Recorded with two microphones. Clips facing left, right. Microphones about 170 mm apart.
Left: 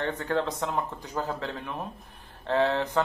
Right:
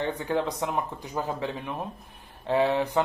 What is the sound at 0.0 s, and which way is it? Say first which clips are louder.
Speech: right 1 dB; 15° right (ahead or behind).